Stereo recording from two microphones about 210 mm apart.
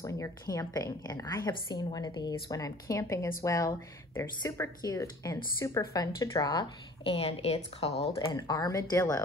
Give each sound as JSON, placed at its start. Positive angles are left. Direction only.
{"t": 0.0, "sound": "a woman's voice", "side_deg": 15}
{"t": 8.2, "sound": "a woman's voice", "side_deg": 20}